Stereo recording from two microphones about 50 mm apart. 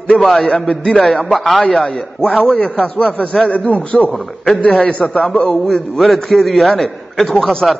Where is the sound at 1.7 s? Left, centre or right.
Centre.